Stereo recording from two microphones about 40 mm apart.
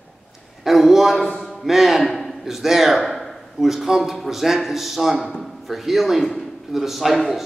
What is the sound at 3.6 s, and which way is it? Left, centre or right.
Speech, centre.